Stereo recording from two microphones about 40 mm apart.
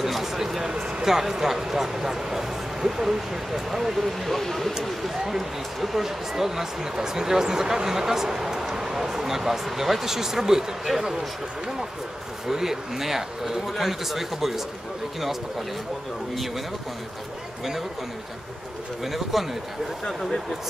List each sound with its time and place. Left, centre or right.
0.0 s a sound: centre
0.7 s a sound: right
1.0 s speech: centre
5.2 s speech: centre
12.4 s speech: centre
19.0 s speech: centre